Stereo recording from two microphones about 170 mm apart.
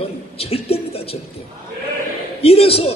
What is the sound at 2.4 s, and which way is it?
Speech, 35° left (ahead or behind).